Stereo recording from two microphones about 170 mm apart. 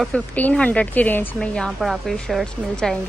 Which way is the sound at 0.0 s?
5° left (ahead or behind).